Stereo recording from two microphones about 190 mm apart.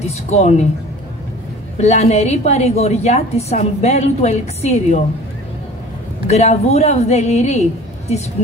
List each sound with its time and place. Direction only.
0.1 s a woman's voice: 35° left (ahead or behind)
1.8 s a woman's voice: 35° left (ahead or behind)
6.2 s a woman's voice: 35° left (ahead or behind)